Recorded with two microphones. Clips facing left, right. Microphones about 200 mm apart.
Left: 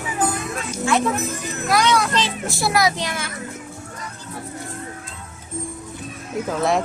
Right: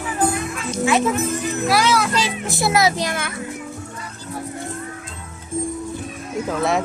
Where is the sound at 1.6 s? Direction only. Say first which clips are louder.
Left 1 dB; 5° right (ahead or behind).